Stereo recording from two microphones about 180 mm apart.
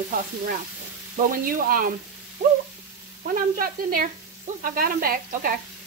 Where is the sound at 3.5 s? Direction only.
55° right (ahead or behind).